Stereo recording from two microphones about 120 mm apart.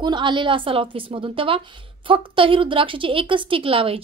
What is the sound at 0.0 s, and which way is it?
A woman's voice, 40° right (ahead or behind).